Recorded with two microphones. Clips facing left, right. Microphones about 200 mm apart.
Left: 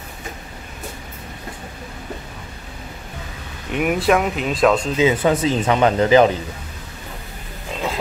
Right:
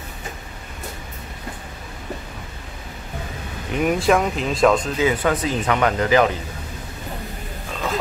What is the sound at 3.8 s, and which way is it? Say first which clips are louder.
Speech: even; 5° left (ahead or behind).